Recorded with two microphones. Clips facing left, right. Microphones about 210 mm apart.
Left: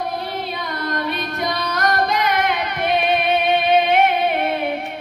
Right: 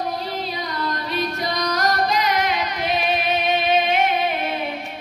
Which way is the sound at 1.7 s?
55° left (ahead or behind).